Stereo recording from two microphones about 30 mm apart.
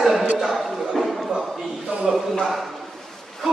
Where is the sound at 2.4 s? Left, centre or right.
Centre.